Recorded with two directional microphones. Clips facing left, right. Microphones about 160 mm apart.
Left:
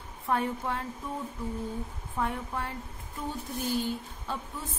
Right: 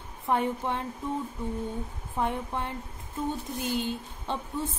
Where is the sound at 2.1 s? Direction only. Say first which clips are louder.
Right 2 dB; 20° right (ahead or behind).